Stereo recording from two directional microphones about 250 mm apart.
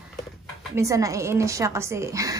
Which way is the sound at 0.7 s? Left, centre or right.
Centre.